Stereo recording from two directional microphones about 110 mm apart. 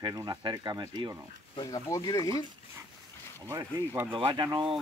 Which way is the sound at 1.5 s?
45° left (ahead or behind).